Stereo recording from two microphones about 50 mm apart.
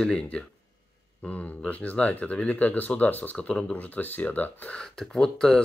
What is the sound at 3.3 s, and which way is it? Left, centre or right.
Speech, centre.